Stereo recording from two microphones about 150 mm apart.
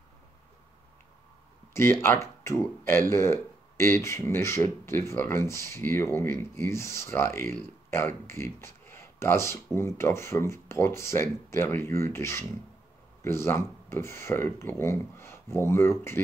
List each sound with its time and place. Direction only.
1.7 s speech: 15° left (ahead or behind)